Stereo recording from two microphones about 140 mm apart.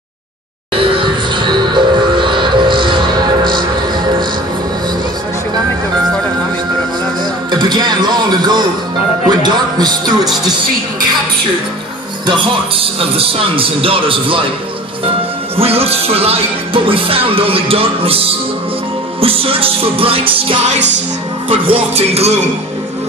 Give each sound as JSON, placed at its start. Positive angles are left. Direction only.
{"t": 0.7, "sound": "music", "side_deg": -40}
{"t": 7.5, "sound": "speech", "side_deg": -30}
{"t": 10.2, "sound": "speech", "side_deg": -5}
{"t": 12.3, "sound": "speech", "side_deg": -40}
{"t": 15.5, "sound": "speech", "side_deg": -45}